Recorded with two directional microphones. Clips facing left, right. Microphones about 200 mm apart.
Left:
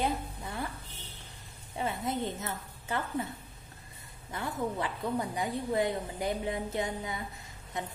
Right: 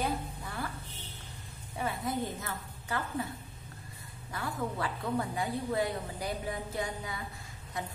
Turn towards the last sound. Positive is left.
turn(degrees=20)  # may be behind; listen again after turning